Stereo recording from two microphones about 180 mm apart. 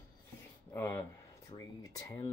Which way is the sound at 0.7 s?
10° left (ahead or behind).